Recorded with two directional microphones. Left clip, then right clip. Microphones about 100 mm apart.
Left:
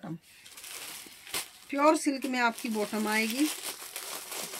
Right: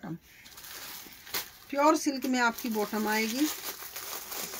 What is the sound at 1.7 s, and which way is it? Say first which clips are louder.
Speech: even; 50° left (ahead or behind).